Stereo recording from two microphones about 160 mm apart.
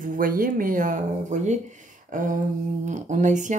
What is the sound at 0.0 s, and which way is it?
Speech, 60° right (ahead or behind).